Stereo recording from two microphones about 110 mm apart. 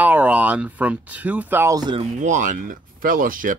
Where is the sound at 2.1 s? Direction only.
90° right.